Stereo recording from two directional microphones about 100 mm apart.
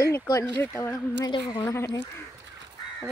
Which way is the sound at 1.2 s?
45° left (ahead or behind).